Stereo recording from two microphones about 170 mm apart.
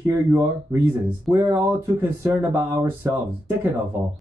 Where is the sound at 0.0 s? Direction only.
15° right (ahead or behind).